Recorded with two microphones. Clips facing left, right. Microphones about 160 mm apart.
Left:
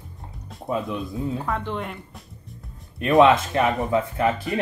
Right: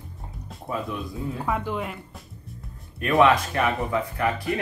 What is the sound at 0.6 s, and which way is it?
Speech, 25° left (ahead or behind).